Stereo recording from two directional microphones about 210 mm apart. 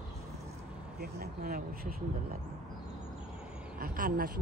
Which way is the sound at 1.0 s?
45° right (ahead or behind).